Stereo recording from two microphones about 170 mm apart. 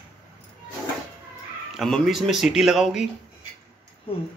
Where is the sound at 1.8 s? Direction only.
Centre (ahead or behind).